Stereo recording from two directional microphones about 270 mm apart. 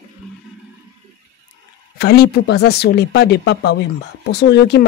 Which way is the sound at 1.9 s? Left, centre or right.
Left.